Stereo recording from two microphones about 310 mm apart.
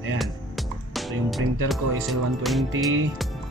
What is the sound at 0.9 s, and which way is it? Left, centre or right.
Speech, centre.